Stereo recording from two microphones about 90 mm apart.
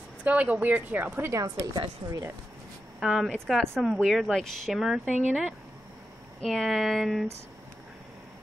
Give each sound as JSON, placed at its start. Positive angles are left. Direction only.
{"t": 0.2, "sound": "speech", "side_deg": -15}
{"t": 1.3, "sound": "speech", "side_deg": -45}
{"t": 3.0, "sound": "speech", "side_deg": -10}
{"t": 3.3, "sound": "a woman's voice", "side_deg": 5}